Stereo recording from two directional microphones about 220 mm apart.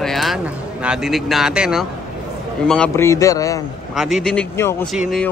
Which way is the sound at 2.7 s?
10° left (ahead or behind).